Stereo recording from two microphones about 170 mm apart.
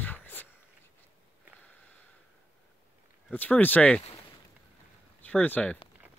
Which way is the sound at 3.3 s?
10° left (ahead or behind).